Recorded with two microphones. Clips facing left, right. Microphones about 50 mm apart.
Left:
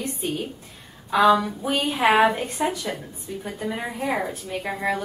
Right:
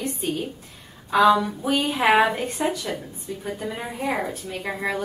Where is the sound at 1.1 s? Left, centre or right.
Centre.